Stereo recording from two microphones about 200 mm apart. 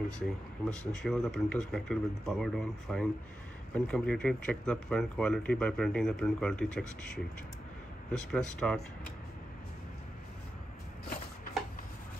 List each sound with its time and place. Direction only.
0.2 s speech: 5° left (ahead or behind)